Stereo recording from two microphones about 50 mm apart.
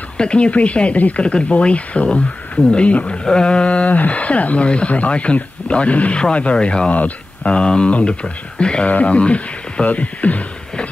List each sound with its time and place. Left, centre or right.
0.2 s speech: left